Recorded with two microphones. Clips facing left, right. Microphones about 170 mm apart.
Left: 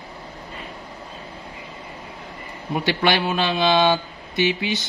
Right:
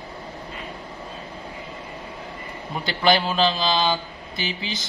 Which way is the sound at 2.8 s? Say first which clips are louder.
Even; 65° left (ahead or behind).